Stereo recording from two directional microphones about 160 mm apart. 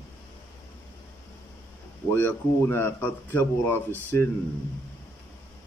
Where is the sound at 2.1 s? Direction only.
15° left (ahead or behind).